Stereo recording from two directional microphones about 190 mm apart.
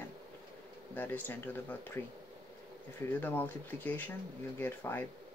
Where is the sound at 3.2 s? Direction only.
10° left (ahead or behind).